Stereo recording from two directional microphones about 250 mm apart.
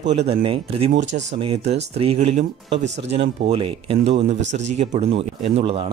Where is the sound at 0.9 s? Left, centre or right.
Right.